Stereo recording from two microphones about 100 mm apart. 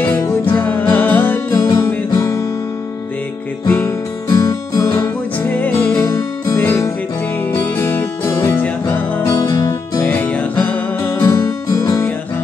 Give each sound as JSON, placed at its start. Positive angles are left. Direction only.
{"t": 0.0, "sound": "music", "side_deg": 20}
{"t": 1.5, "sound": "music", "side_deg": 35}
{"t": 3.6, "sound": "music", "side_deg": 20}
{"t": 4.3, "sound": "music", "side_deg": 35}
{"t": 5.9, "sound": "music", "side_deg": 30}
{"t": 6.6, "sound": "music", "side_deg": 20}
{"t": 8.5, "sound": "music", "side_deg": 15}
{"t": 9.3, "sound": "music", "side_deg": 40}
{"t": 10.0, "sound": "music", "side_deg": 15}
{"t": 11.1, "sound": "music", "side_deg": 35}